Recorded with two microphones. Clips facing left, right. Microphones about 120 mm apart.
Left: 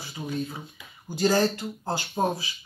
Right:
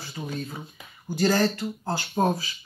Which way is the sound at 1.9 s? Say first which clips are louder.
Right 2 dB; 15° left (ahead or behind).